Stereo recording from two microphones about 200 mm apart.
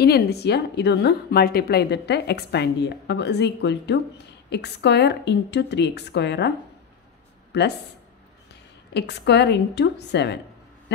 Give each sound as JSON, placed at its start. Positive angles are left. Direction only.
{"t": 0.0, "sound": "a woman's voice", "side_deg": 55}
{"t": 7.5, "sound": "a woman's voice", "side_deg": 60}
{"t": 8.9, "sound": "a woman's voice", "side_deg": 60}